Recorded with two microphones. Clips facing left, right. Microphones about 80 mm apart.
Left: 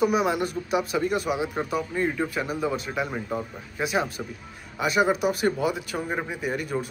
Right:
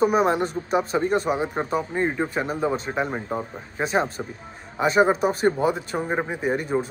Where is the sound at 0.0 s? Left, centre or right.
Right.